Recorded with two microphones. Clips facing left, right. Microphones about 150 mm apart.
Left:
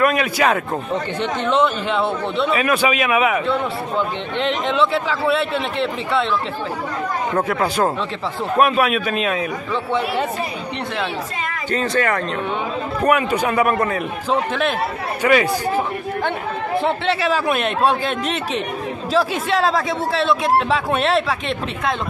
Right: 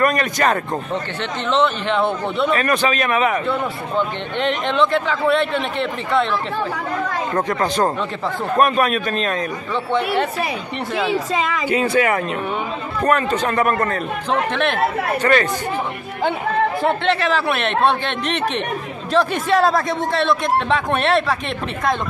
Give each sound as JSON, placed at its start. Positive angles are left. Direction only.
{"t": 0.0, "sound": "a man's voice", "side_deg": 5}
{"t": 7.3, "sound": "a man's voice", "side_deg": 5}
{"t": 11.3, "sound": "a woman's voice", "side_deg": -90}
{"t": 11.7, "sound": "speech", "side_deg": -10}
{"t": 13.0, "sound": "a man's voice", "side_deg": 10}
{"t": 16.8, "sound": "a man's voice", "side_deg": 5}